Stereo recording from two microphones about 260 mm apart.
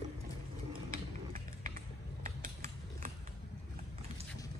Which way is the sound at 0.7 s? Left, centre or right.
Right.